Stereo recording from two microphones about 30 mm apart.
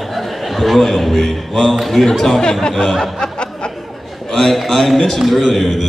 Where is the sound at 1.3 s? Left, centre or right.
Centre.